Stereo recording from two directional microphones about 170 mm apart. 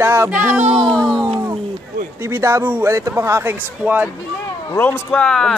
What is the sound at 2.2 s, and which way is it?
A man's voice, 15° right (ahead or behind).